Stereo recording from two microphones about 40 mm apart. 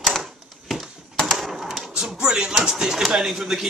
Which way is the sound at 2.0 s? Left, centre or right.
Centre.